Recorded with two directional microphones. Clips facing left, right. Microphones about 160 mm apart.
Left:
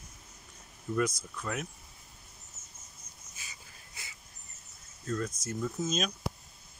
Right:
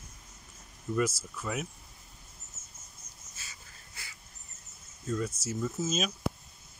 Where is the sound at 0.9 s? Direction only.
5° right (ahead or behind).